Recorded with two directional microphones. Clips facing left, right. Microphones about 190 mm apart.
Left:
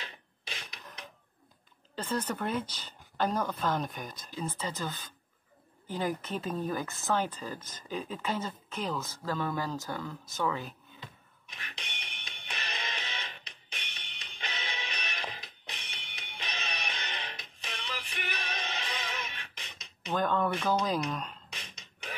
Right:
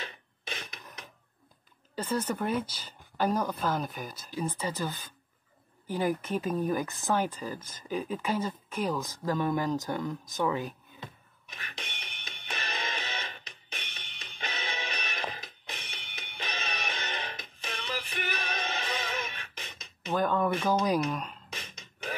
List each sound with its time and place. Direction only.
0.0 s a sound: 50° right (ahead or behind)
2.0 s speech: 10° right (ahead or behind)
11.0 s music: 50° right (ahead or behind)
20.1 s speech: 10° right (ahead or behind)
21.5 s beatboxing: 50° right (ahead or behind)